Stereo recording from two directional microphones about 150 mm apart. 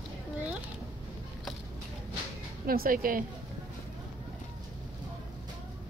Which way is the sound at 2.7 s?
75° right (ahead or behind).